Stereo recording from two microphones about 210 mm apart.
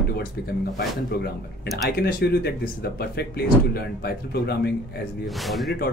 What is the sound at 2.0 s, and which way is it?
Speech, 50° left (ahead or behind).